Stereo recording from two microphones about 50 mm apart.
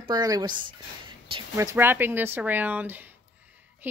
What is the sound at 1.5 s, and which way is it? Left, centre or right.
Speech, right.